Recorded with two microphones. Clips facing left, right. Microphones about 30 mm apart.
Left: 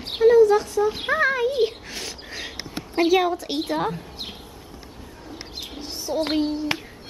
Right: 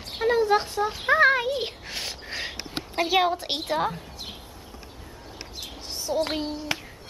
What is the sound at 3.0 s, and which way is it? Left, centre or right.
Speech, right.